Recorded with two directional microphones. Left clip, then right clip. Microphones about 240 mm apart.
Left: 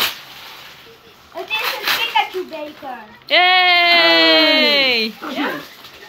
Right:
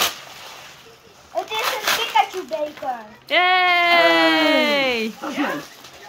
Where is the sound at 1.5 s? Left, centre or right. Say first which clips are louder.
Left 3 dB; right.